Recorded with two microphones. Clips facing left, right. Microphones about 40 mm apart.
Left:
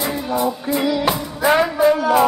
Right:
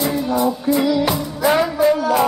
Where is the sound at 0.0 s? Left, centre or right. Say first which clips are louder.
Right 2 dB; centre.